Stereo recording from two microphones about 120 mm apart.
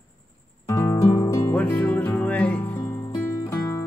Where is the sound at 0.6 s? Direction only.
25° left (ahead or behind).